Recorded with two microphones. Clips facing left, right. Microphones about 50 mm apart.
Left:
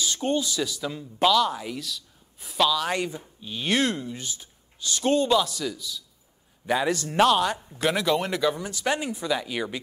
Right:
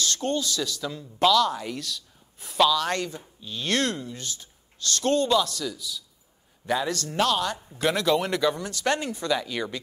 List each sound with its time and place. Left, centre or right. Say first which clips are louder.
0.0 s speech: left 1 dB; centre
6.6 s speech: left 2 dB; centre
7.6 s speech: even; centre